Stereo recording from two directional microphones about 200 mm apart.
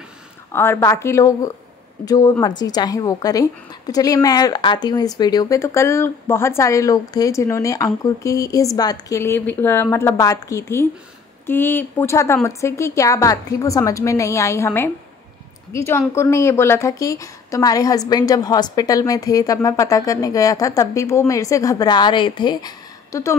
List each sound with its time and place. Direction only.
0.5 s a woman's voice: 10° left (ahead or behind)